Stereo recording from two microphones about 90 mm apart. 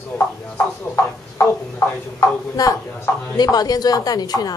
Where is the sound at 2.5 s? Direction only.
40° left (ahead or behind).